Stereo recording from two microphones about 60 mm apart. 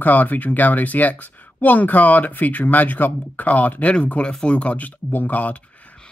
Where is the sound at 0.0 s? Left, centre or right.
Left.